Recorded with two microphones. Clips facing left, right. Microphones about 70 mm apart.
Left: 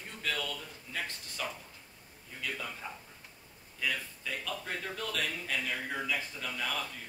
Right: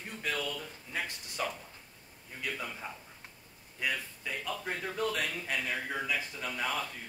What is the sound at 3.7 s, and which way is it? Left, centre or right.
A man's voice, centre.